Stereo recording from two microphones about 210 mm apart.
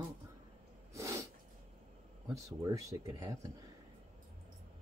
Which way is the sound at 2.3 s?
15° right (ahead or behind).